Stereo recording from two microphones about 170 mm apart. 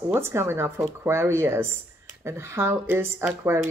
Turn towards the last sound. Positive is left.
turn(degrees=-15)  # may be behind; listen again after turning